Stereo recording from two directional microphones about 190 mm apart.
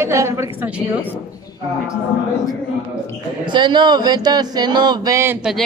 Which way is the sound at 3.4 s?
25° right (ahead or behind).